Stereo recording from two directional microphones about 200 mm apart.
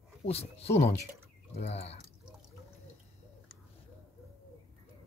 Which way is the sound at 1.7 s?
30° left (ahead or behind).